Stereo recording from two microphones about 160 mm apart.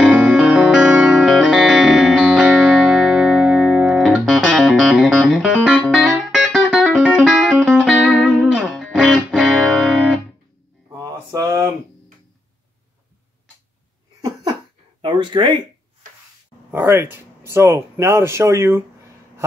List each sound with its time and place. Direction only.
0.0 s music: 5° right (ahead or behind)
11.0 s mantra: 20° right (ahead or behind)
14.2 s a sound: 25° right (ahead or behind)
16.7 s speech: 15° right (ahead or behind)